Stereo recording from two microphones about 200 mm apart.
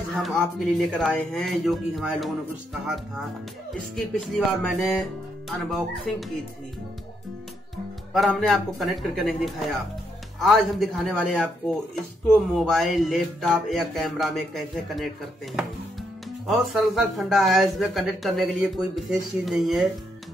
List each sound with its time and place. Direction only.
0.2 s speech: centre (ahead or behind)
3.9 s speech: centre (ahead or behind)
6.1 s speech: centre (ahead or behind)
7.7 s speech: centre (ahead or behind)
16.4 s speech: centre (ahead or behind)